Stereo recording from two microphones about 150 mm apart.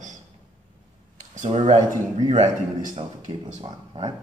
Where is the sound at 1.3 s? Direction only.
55° right (ahead or behind).